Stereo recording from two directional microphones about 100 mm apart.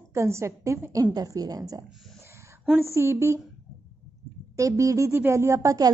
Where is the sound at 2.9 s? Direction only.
25° right (ahead or behind).